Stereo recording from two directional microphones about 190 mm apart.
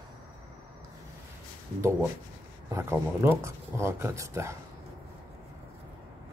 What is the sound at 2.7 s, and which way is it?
Speech, 15° right (ahead or behind).